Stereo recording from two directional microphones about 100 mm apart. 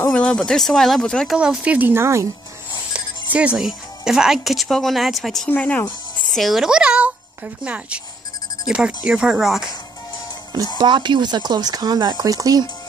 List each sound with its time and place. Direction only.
0.1 s speech: 10° left (ahead or behind)
1.3 s speech: 10° right (ahead or behind); by 2.2 s 25° right (ahead or behind)
3.3 s speech: 10° right (ahead or behind)
5.5 s speech: 15° left (ahead or behind)
6.2 s speech: centre (ahead or behind)
10.8 s speech: 50° right (ahead or behind)